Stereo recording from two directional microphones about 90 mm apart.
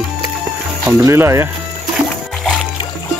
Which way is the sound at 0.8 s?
40° right (ahead or behind).